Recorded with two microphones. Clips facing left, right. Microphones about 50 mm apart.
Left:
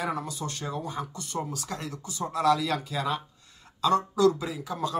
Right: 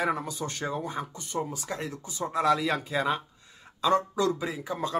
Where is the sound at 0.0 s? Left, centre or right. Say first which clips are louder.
Right 2 dB; right.